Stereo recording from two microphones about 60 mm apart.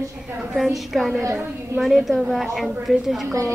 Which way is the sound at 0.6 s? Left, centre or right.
Centre.